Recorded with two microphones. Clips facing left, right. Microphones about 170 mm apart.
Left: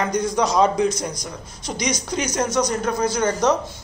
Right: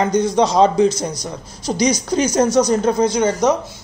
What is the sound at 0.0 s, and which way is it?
Speech, 25° right (ahead or behind).